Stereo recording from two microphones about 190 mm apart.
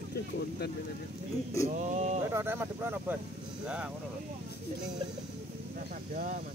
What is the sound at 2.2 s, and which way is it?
Speech, 15° right (ahead or behind).